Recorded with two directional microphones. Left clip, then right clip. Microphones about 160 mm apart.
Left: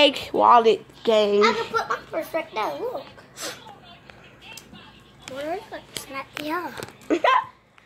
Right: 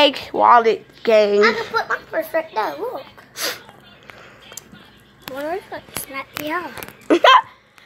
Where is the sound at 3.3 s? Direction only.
50° right (ahead or behind).